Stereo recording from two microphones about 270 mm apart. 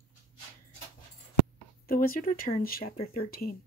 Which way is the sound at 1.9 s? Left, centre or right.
Left.